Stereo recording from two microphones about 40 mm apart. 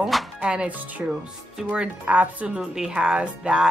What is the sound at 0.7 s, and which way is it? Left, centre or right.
Speech, right.